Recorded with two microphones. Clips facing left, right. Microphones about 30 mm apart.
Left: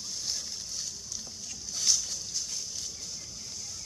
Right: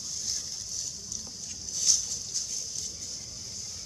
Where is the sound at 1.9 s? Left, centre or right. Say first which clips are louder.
Even; centre.